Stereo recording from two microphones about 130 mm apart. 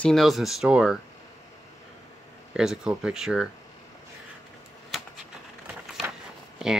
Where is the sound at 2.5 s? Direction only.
5° right (ahead or behind).